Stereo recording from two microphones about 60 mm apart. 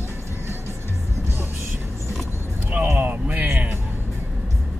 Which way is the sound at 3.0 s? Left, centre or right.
Right.